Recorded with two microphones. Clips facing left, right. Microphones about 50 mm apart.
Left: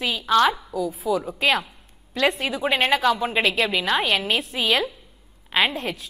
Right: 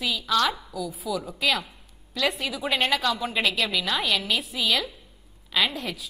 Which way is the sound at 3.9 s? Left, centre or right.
Left.